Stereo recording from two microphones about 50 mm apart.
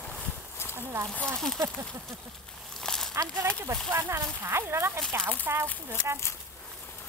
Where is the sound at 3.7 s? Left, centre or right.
Right.